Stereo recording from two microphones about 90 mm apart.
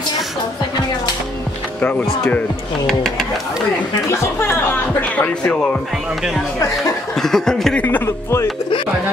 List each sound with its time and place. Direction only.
1.8 s speech: 20° left (ahead or behind)
2.9 s speech: 5° left (ahead or behind)
4.1 s speech: 25° left (ahead or behind)
5.1 s speech: 15° left (ahead or behind)
7.2 s speech: 5° left (ahead or behind)
7.8 s speech: 20° left (ahead or behind)